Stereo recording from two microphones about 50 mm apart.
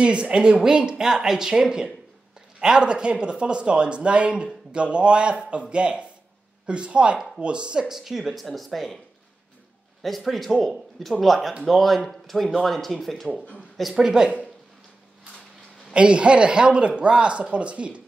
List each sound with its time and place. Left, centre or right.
0.0 s speech: centre
7.9 s speech: centre
10.0 s speech: centre
13.9 s speech: centre
15.9 s speech: right